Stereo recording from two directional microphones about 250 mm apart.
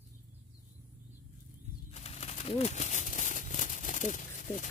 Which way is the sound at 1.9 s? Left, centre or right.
Left.